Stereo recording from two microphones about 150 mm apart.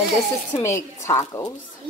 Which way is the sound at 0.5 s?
20° left (ahead or behind).